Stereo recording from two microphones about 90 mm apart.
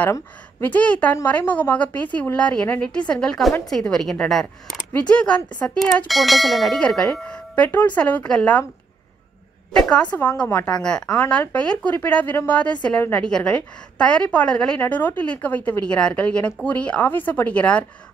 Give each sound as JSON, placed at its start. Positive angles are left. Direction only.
{"t": 0.6, "sound": "speech", "side_deg": 15}
{"t": 6.0, "sound": "speech", "side_deg": 0}
{"t": 9.7, "sound": "a woman's voice", "side_deg": 10}
{"t": 14.8, "sound": "a woman's voice", "side_deg": 20}